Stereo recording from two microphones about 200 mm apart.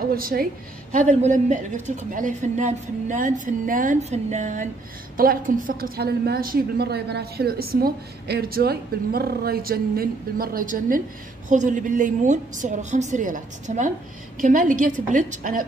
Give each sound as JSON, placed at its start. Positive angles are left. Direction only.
{"t": 0.1, "sound": "a woman's voice", "side_deg": -45}